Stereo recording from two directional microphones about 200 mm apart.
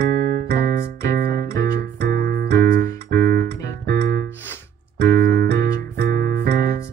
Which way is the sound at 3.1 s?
45° right (ahead or behind).